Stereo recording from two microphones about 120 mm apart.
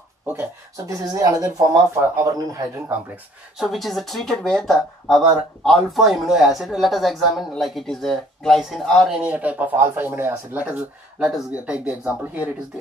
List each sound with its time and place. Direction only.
0.3 s speech: 20° right (ahead or behind)
3.5 s speech: centre (ahead or behind)
9.2 s speech: 10° right (ahead or behind)